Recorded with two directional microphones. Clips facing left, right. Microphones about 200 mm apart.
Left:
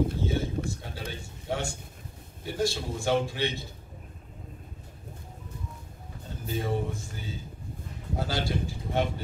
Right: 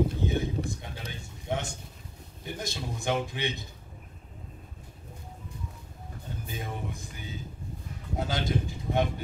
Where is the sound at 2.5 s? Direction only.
20° right (ahead or behind).